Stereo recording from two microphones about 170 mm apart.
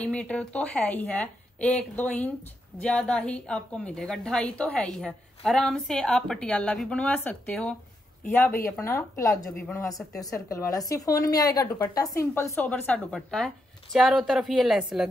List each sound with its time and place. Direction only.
0.0 s a woman's voice: 5° left (ahead or behind)